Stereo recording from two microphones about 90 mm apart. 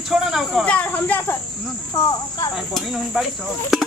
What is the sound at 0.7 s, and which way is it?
Snake, 15° left (ahead or behind).